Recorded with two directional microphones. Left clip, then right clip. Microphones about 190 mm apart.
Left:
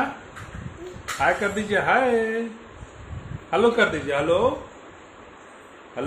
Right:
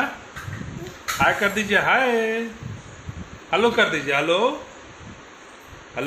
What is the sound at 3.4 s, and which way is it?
Speech, 10° right (ahead or behind).